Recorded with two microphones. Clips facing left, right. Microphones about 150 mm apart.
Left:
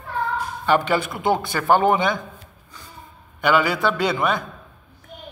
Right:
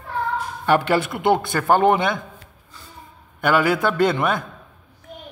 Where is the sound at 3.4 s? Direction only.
55° right (ahead or behind).